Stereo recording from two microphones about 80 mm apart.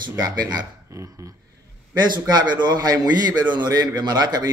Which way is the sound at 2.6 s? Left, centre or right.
Right.